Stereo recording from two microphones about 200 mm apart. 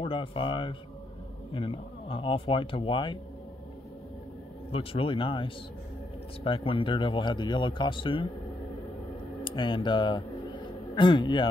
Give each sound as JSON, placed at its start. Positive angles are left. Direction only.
{"t": 0.0, "sound": "speech", "side_deg": 25}
{"t": 4.6, "sound": "speech", "side_deg": 30}
{"t": 9.4, "sound": "a sound", "side_deg": 25}